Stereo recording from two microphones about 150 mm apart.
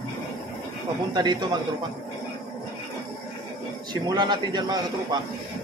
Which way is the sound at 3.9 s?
30° right (ahead or behind).